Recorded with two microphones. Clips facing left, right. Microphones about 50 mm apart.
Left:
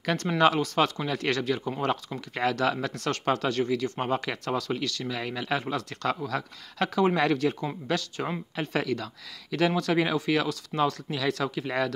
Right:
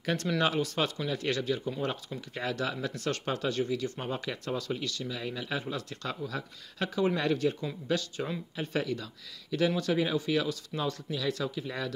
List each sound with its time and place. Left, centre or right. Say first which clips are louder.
0.0 s speech: left 6 dB; left
1.7 s speech: left 5 dB; left
9.7 s speech: left 4 dB; left